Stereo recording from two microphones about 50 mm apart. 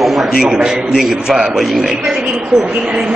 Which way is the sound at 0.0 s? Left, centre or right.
Centre.